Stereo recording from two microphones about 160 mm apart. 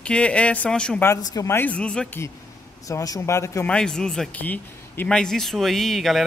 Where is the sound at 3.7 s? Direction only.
5° left (ahead or behind).